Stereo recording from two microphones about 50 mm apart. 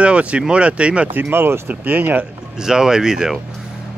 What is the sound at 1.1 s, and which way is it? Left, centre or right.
Speech, right.